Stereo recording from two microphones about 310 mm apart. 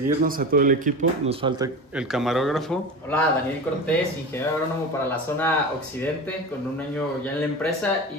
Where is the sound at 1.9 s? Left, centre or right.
Centre.